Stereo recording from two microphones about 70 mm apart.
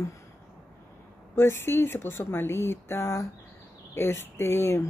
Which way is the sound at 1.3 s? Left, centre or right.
Left.